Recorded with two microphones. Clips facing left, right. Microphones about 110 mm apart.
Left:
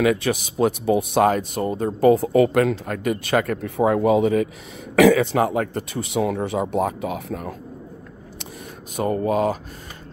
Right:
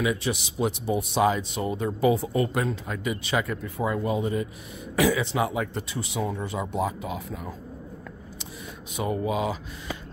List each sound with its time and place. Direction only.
0.0 s speech: 65° left (ahead or behind)
2.3 s speech: 75° left (ahead or behind)
4.9 s a man's voice: 65° left (ahead or behind)
8.9 s speech: 50° left (ahead or behind)